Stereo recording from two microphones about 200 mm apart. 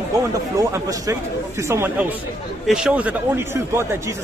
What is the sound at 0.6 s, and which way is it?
A man's voice, 15° right (ahead or behind).